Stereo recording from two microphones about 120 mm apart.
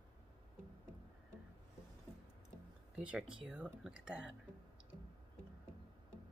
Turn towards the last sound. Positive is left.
turn(degrees=-10)  # may be behind; listen again after turning